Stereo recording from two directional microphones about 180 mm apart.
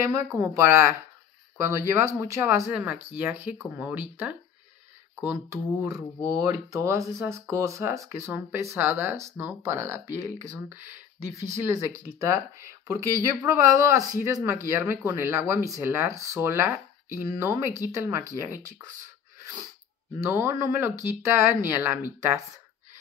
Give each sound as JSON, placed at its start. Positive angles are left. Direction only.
{"t": 0.0, "sound": "speech", "side_deg": -20}
{"t": 6.2, "sound": "speech", "side_deg": -20}
{"t": 11.3, "sound": "speech", "side_deg": -15}
{"t": 20.2, "sound": "speech", "side_deg": -15}